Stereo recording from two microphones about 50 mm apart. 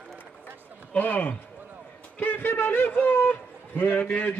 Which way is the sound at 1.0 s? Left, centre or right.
Left.